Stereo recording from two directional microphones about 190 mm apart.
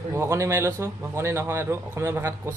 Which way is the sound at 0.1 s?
15° right (ahead or behind).